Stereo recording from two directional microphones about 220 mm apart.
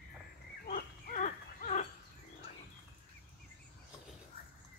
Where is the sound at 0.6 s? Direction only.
35° left (ahead or behind).